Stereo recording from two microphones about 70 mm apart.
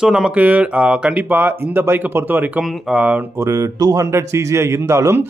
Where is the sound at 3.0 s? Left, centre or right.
Right.